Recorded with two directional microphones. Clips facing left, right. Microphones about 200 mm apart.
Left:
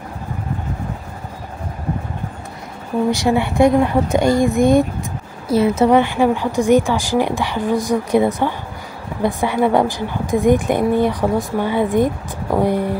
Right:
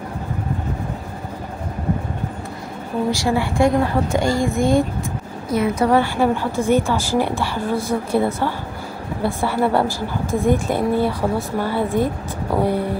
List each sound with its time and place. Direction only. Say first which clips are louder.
3.1 s a woman's voice: left 3 dB; 20° left (ahead or behind)